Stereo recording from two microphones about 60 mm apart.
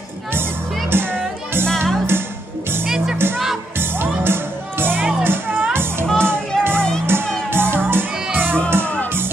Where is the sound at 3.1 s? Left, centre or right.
Right.